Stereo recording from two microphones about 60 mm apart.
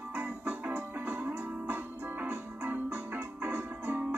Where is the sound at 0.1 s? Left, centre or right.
Right.